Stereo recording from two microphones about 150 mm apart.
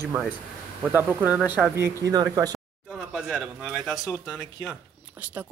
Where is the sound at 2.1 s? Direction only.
25° right (ahead or behind).